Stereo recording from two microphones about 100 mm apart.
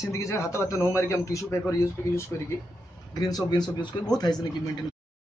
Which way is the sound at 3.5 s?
45° left (ahead or behind).